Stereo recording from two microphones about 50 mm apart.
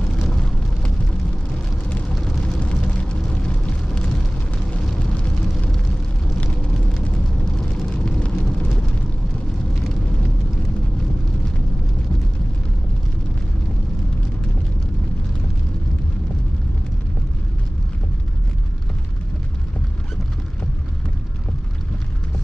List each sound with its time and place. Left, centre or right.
0.1 s vehicle: centre
7.1 s vehicle: left